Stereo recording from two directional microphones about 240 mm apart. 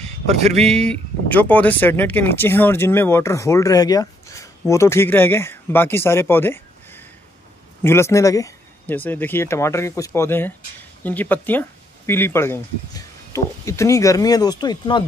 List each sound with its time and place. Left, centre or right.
0.0 s speech: right
0.7 s speech: centre